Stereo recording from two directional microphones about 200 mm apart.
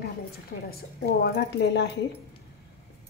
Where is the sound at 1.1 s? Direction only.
55° left (ahead or behind).